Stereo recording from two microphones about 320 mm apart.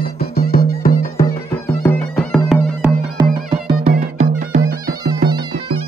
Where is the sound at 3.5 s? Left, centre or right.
Centre.